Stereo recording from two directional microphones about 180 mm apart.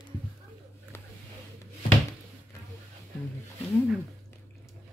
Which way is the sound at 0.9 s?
15° left (ahead or behind).